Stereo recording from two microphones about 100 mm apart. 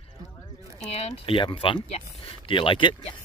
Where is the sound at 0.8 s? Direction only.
90° left.